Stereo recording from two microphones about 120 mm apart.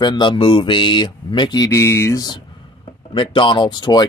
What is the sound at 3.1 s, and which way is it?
Speech, 45° left (ahead or behind).